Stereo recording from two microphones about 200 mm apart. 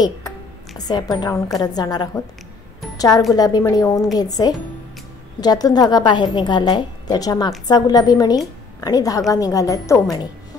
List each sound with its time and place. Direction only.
0.7 s a woman's voice: 20° left (ahead or behind)